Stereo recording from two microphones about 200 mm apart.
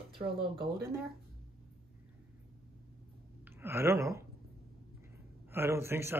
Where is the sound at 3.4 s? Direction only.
10° right (ahead or behind).